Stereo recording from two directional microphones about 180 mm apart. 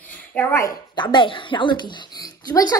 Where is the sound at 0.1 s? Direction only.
10° left (ahead or behind).